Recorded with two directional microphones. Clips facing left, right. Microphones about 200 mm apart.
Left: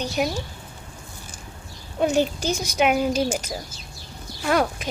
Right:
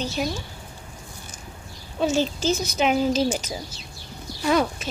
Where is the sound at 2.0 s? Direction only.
15° left (ahead or behind).